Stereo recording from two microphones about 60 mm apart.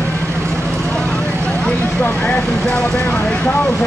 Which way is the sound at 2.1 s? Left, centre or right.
Centre.